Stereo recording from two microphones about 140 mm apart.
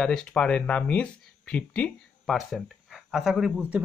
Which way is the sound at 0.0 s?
5° left (ahead or behind).